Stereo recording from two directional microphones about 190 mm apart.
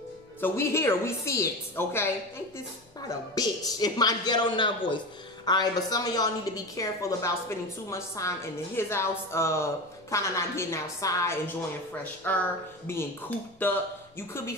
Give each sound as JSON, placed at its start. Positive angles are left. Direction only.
{"t": 0.4, "sound": "a woman's voice", "side_deg": 15}
{"t": 3.3, "sound": "a man's voice", "side_deg": 20}
{"t": 13.6, "sound": "a man's voice", "side_deg": 10}